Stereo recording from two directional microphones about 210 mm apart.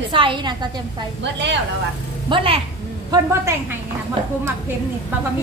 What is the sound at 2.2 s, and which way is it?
Speech, 25° right (ahead or behind).